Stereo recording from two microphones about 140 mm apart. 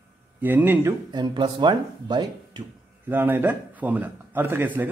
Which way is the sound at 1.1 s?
30° right (ahead or behind).